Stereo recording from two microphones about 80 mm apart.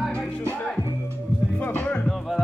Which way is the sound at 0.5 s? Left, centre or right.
Centre.